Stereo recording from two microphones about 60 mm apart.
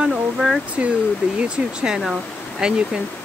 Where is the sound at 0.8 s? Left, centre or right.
Centre.